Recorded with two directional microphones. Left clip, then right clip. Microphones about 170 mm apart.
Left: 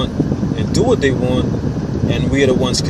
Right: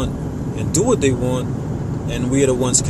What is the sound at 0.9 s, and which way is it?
Speech, 15° right (ahead or behind).